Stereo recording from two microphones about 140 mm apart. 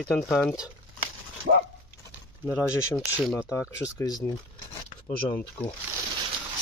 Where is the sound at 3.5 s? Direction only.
25° left (ahead or behind).